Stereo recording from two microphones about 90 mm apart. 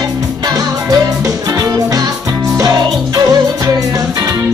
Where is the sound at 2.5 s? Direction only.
40° right (ahead or behind).